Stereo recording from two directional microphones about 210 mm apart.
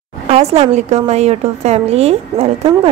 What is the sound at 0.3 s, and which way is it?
A woman's voice, 30° right (ahead or behind).